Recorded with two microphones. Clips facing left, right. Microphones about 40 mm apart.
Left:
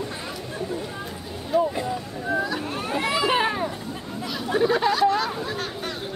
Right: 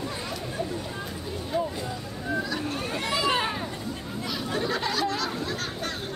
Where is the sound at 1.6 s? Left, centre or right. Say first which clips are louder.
Left 6 dB; centre.